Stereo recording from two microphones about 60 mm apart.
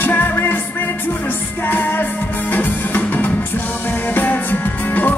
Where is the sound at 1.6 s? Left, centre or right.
Left.